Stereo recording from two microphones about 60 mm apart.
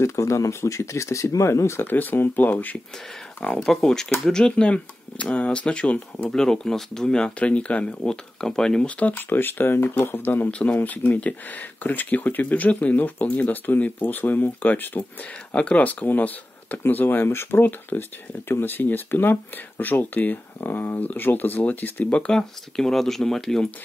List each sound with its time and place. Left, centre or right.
0.0 s speech: left
1.9 s speech: left
3.4 s speech: centre; by 6.3 s left
6.3 s speech: centre
9.0 s speech: left
22.3 s speech: centre